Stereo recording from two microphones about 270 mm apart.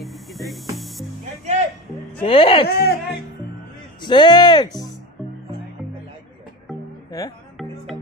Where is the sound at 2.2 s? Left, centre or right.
Centre.